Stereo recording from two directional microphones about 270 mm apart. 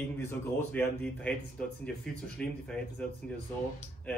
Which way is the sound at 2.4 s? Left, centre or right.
Centre.